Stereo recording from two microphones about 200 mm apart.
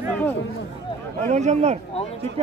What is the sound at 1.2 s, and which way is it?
Speech, 35° right (ahead or behind).